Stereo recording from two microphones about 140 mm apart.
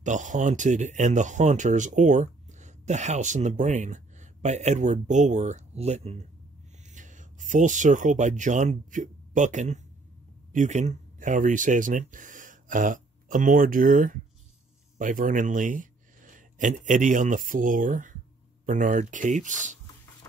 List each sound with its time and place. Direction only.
0.0 s speech: 60° right (ahead or behind)
6.9 s speech: 65° right (ahead or behind)